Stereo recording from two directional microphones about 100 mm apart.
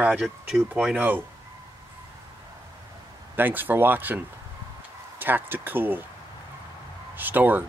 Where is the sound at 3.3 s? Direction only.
20° right (ahead or behind).